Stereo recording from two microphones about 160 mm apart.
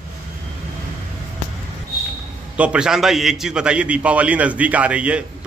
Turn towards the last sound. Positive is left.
turn(degrees=-10)  # may be behind; listen again after turning